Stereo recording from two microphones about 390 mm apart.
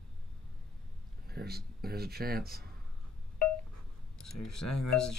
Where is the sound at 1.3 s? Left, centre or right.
Right.